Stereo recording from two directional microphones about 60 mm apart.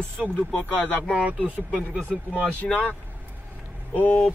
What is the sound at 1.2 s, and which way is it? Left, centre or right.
Speech, right.